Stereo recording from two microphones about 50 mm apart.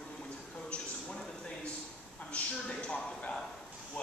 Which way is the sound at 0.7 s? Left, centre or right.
Centre.